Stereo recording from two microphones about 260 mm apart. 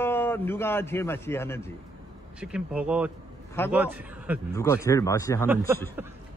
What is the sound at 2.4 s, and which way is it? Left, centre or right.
A man's voice, centre.